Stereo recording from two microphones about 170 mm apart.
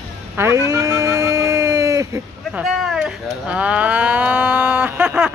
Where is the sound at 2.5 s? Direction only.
Centre (ahead or behind).